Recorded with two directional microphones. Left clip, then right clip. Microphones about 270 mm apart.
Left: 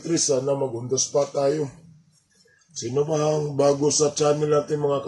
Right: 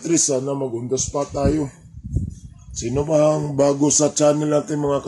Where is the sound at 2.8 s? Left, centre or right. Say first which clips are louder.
Right 5 dB; right.